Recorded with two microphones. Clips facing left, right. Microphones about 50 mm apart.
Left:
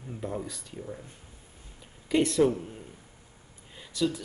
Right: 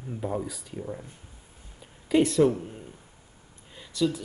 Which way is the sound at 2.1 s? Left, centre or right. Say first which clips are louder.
Right 2 dB; centre.